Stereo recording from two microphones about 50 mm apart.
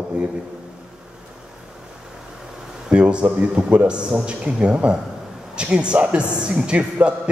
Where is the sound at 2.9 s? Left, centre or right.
Right.